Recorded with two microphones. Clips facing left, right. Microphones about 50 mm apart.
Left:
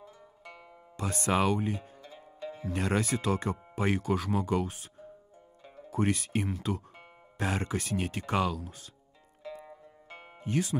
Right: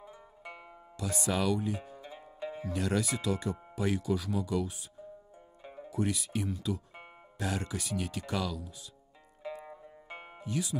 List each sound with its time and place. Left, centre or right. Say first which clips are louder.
0.4 s music: right 3 dB; centre
0.9 s speech: left 4 dB; left
2.0 s music: right 2 dB; centre
2.6 s speech: left 2 dB; left
5.6 s music: right 4 dB; centre
5.9 s speech: left 3 dB; left
9.4 s music: right 2 dB; right
10.4 s speech: left 4 dB; left